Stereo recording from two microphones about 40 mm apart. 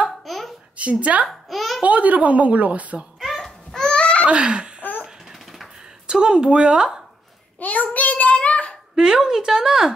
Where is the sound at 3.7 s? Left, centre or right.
Centre.